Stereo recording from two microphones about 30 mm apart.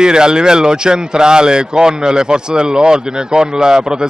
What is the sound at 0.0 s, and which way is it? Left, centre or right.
Speech, right.